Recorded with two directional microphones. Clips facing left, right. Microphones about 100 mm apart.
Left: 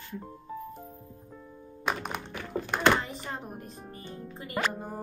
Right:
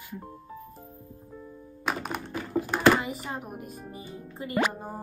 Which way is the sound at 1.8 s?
5° right (ahead or behind).